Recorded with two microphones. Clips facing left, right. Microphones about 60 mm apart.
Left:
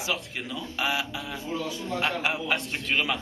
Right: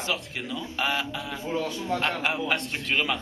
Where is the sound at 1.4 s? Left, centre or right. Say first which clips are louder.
Right 4 dB; right.